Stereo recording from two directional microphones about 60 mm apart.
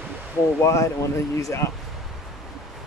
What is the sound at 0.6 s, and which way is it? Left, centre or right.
Speech, left.